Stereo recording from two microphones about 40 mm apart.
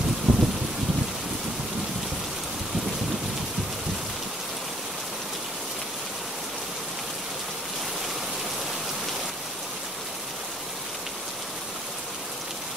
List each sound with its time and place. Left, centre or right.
0.3 s rain: right